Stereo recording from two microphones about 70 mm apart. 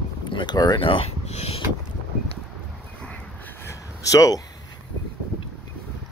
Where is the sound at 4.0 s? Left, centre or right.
Left.